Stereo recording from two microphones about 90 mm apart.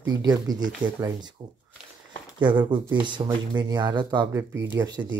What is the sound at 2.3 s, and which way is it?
Speech, 60° right (ahead or behind).